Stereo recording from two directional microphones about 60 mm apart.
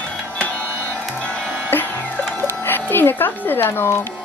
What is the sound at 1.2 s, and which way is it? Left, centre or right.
Music, centre.